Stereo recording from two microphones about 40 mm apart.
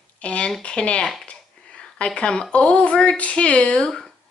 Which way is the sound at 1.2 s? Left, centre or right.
Left.